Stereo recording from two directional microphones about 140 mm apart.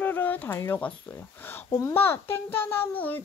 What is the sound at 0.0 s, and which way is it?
Speech, 10° left (ahead or behind).